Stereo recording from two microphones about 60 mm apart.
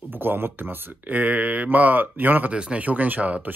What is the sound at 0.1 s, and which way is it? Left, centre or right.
Speech, right.